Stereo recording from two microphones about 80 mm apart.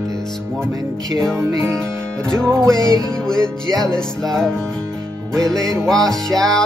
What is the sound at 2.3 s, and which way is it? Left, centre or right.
Music, centre.